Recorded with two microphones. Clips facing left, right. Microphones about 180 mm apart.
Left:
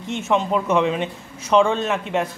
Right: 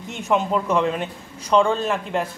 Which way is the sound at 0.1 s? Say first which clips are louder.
Left 1 dB; centre (ahead or behind).